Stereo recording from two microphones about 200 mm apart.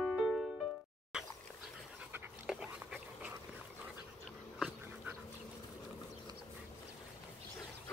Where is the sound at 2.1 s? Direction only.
5° right (ahead or behind).